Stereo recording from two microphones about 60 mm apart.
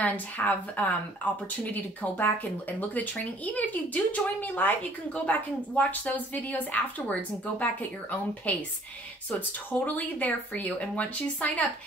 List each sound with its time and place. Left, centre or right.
0.0 s speech: left